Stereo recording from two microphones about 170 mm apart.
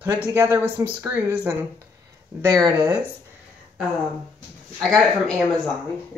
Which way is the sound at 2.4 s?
25° right (ahead or behind).